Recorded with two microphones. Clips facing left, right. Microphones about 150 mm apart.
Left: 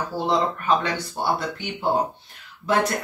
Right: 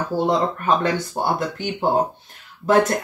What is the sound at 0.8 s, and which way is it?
Speech, 45° right (ahead or behind).